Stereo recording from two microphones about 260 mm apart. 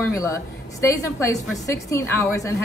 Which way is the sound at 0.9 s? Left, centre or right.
Centre.